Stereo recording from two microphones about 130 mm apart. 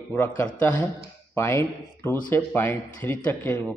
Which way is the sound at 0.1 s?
15° left (ahead or behind).